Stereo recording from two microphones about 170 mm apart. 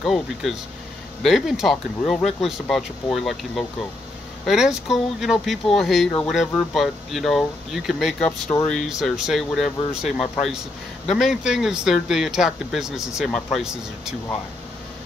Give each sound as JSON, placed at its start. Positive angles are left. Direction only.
{"t": 0.0, "sound": "speech", "side_deg": 0}
{"t": 8.3, "sound": "speech", "side_deg": 15}
{"t": 8.6, "sound": "speech", "side_deg": 0}